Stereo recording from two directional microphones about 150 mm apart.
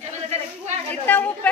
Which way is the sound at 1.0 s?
10° left (ahead or behind).